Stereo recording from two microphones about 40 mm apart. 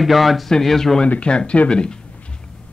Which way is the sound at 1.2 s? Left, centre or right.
Left.